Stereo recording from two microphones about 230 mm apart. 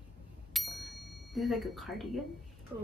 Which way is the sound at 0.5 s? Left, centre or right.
Centre.